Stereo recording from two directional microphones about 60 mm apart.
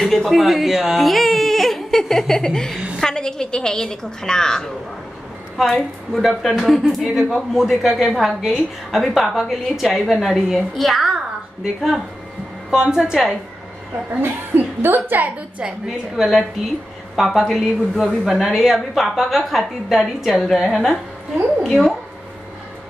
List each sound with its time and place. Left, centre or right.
0.0 s a woman's voice: centre
5.8 s a woman's voice: centre
14.2 s a woman's voice: right
16.2 s a woman's voice: centre